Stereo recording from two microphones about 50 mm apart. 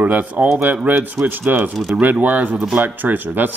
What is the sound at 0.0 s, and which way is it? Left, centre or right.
Speech, right.